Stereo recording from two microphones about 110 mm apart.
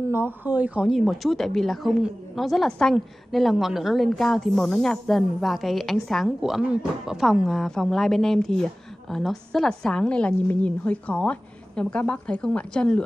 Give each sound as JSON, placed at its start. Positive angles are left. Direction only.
{"t": 0.1, "sound": "a woman's voice", "side_deg": -20}